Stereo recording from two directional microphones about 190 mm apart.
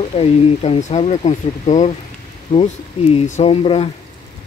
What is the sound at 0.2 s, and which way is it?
Speech, 30° left (ahead or behind).